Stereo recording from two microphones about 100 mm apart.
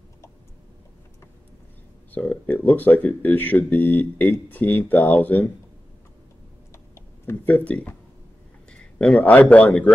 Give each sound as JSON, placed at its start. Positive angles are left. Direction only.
{"t": 2.1, "sound": "speech", "side_deg": 15}
{"t": 7.2, "sound": "a man's voice", "side_deg": 15}